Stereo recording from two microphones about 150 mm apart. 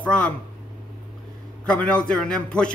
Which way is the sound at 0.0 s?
10° left (ahead or behind).